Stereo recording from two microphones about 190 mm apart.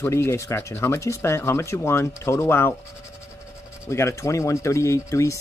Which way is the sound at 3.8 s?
15° left (ahead or behind).